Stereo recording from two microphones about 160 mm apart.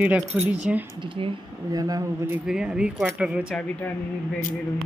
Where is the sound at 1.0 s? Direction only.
30° right (ahead or behind).